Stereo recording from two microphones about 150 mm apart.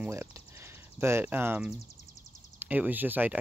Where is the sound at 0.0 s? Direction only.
15° right (ahead or behind).